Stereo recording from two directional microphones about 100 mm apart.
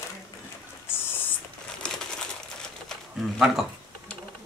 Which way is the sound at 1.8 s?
10° left (ahead or behind).